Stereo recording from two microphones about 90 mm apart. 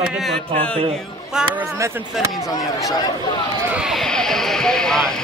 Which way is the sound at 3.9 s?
5° left (ahead or behind).